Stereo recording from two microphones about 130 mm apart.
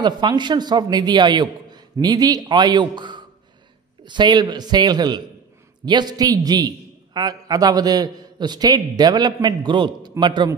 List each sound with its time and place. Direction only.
0.0 s a man's voice: 35° right (ahead or behind)